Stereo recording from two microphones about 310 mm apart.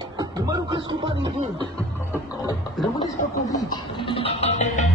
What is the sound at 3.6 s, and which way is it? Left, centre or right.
Music, centre.